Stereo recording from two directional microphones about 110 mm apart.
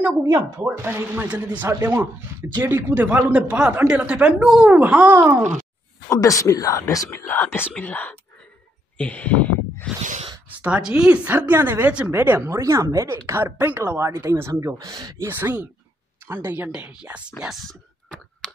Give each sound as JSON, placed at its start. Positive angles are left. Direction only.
{"t": 0.6, "sound": "speech", "side_deg": -20}
{"t": 6.0, "sound": "speech", "side_deg": 30}
{"t": 7.2, "sound": "speech", "side_deg": 20}
{"t": 8.9, "sound": "a sound", "side_deg": 10}
{"t": 10.5, "sound": "speech", "side_deg": -10}
{"t": 15.1, "sound": "speech", "side_deg": -20}
{"t": 17.4, "sound": "whispering", "side_deg": 0}